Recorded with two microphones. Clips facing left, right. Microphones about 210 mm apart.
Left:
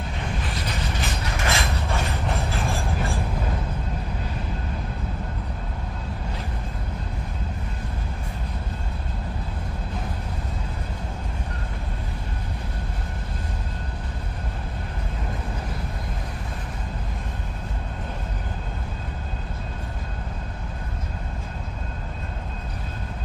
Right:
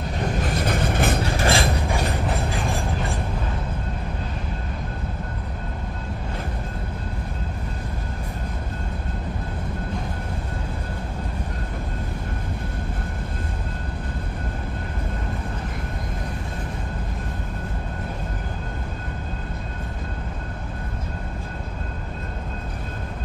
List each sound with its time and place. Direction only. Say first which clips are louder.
0.2 s train: right 8 dB; 45° right (ahead or behind)
1.2 s mechanisms: right 5 dB; 30° right (ahead or behind)